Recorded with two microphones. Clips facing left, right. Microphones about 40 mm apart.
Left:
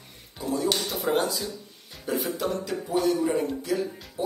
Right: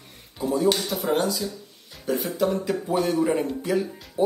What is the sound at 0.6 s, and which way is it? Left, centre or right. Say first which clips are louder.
Speech: right 4 dB; centre.